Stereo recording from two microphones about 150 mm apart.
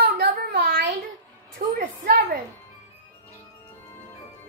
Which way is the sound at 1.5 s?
75° right (ahead or behind).